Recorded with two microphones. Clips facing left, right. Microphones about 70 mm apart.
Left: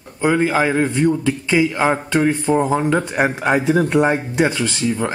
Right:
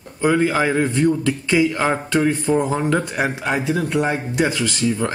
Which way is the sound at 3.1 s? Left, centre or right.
Left.